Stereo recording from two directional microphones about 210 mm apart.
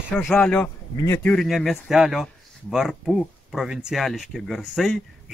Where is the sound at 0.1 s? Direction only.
5° left (ahead or behind).